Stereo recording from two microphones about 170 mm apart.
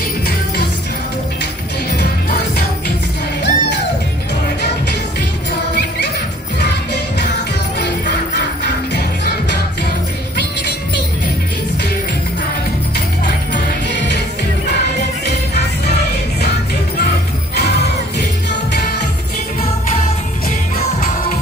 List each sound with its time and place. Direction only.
3.4 s music: 85° left
6.6 s jingle bell: 80° left
8.9 s music: 80° left